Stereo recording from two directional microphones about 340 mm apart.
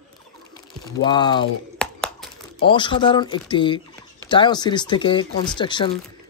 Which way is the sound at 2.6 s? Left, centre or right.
Centre.